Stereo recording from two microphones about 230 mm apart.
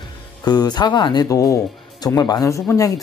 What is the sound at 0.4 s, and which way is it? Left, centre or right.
Speech, centre.